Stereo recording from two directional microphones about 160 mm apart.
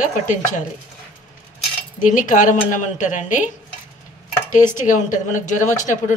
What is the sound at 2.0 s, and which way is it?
Speech, 55° left (ahead or behind).